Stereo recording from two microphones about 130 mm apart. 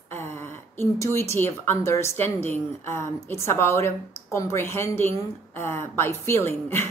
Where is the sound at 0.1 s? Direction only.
20° left (ahead or behind).